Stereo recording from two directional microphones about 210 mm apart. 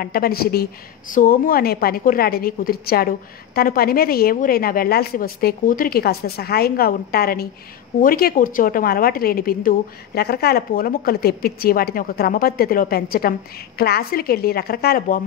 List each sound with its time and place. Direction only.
0.0 s a woman's voice: 45° left (ahead or behind)